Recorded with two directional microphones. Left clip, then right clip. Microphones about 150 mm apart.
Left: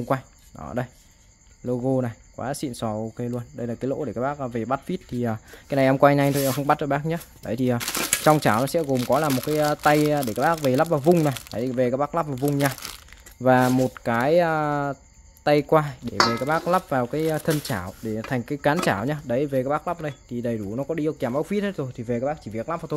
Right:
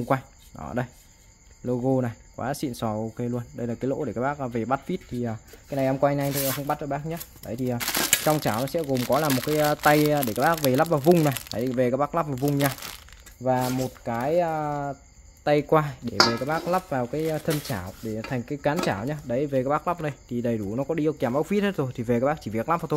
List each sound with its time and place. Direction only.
0.0 s speech: centre (ahead or behind)
5.7 s speech: 55° left (ahead or behind)
7.8 s speech: 15° right (ahead or behind)
8.2 s speech: 50° left (ahead or behind)
9.1 s speech: 15° left (ahead or behind)
13.4 s speech: 55° left (ahead or behind)
15.7 s speech: 5° left (ahead or behind)
16.4 s speech: 25° left (ahead or behind)
19.5 s speech: centre (ahead or behind); by 22.9 s 20° right (ahead or behind)